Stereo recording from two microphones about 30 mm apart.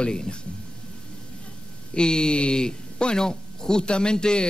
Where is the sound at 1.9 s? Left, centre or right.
Left.